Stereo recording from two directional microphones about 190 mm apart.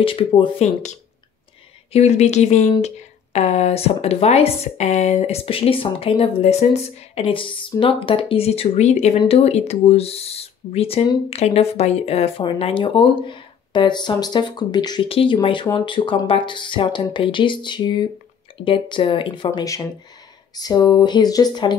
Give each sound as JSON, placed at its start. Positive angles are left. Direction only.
{"t": 0.0, "sound": "speech", "side_deg": 25}